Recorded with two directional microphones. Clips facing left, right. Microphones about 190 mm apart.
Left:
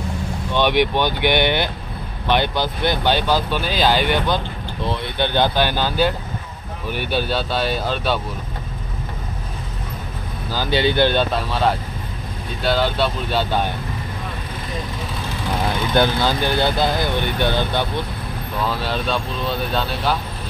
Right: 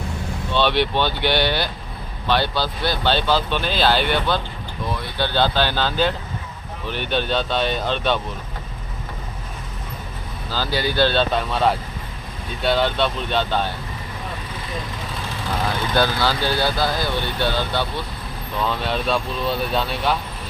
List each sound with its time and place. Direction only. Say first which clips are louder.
0.5 s speech: left 2 dB; 15° left (ahead or behind)
4.8 s speech: left 3 dB; 25° left (ahead or behind); by 8.2 s 5° left (ahead or behind)
10.5 s speech: left 4 dB; 20° left (ahead or behind)
11.3 s speech: even; centre (ahead or behind)
15.9 s speech: left 3 dB; 20° left (ahead or behind)
18.6 s speech: even; 5° left (ahead or behind)